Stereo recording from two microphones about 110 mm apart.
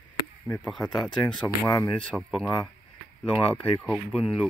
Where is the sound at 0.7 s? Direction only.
5° left (ahead or behind).